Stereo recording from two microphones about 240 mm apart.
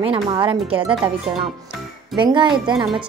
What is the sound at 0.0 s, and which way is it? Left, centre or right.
Speech, right.